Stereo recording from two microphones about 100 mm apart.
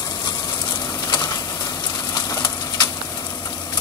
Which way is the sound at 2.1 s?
45° left (ahead or behind).